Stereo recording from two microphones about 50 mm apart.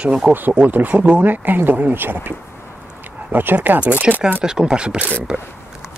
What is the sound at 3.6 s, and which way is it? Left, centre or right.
Speech, right.